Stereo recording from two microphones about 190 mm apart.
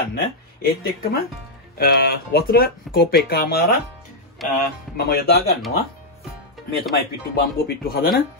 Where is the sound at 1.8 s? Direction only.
55° left (ahead or behind).